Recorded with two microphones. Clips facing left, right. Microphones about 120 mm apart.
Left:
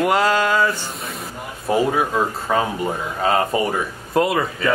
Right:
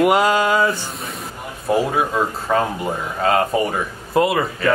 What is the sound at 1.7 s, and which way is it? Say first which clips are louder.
Speech: even; centre (ahead or behind).